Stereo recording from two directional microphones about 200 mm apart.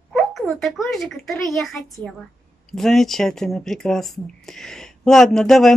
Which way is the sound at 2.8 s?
Centre (ahead or behind).